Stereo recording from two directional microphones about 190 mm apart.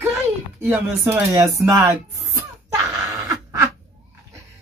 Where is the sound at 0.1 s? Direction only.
5° right (ahead or behind).